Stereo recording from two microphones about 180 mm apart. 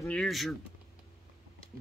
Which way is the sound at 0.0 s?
5° left (ahead or behind).